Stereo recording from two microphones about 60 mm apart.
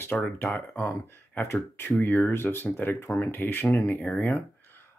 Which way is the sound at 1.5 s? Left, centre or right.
Left.